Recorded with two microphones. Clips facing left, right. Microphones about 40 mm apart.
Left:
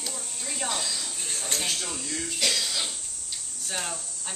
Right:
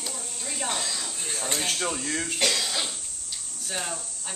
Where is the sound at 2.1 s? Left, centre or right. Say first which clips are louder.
Right 4 dB; right.